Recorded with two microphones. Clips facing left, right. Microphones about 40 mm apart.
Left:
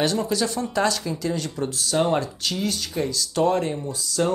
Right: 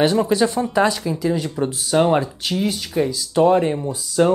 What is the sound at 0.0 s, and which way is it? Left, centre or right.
Speech, right.